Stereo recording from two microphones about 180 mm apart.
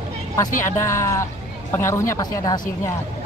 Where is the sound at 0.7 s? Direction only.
15° left (ahead or behind).